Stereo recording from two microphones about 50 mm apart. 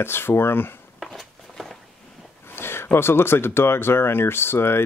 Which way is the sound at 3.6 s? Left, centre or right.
Left.